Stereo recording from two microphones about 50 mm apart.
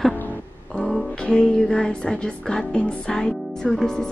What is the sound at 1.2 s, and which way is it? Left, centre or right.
Speech, centre.